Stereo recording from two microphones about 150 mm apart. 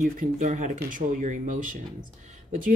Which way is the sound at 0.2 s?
55° right (ahead or behind).